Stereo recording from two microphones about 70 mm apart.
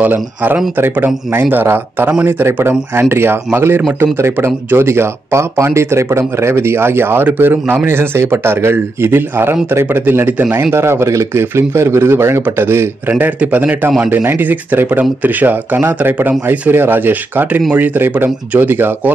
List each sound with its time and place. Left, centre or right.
0.0 s speech: right
13.1 s speech: right